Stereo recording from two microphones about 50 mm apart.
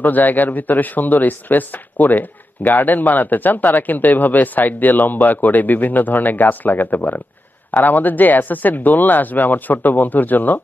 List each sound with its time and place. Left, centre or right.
0.0 s speech: left